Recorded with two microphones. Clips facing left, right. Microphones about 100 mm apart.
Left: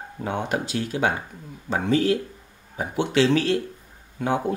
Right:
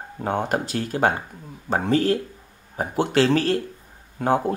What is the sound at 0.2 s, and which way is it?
Speech, 40° right (ahead or behind).